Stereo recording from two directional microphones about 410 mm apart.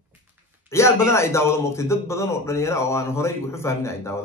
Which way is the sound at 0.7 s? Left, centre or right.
Centre.